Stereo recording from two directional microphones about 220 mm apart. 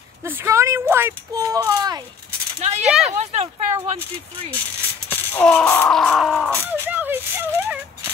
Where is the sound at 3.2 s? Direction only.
30° right (ahead or behind).